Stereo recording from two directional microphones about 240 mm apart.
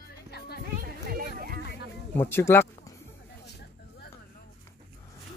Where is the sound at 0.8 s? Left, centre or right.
Right.